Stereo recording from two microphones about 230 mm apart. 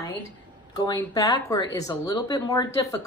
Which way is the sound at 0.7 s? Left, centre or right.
Centre.